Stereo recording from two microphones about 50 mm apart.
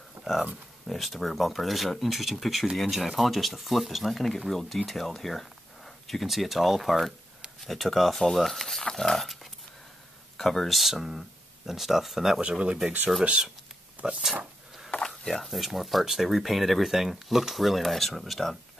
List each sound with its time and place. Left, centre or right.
0.2 s a sound: centre
0.8 s speech: centre
12.4 s speech: right
14.0 s speech: centre
14.9 s a sound: centre
15.4 s speech: centre